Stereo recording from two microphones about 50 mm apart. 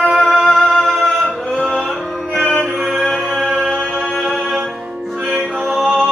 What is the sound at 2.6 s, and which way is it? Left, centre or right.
Music, centre.